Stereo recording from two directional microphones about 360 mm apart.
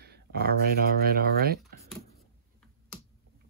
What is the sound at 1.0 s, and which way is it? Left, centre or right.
Speech, right.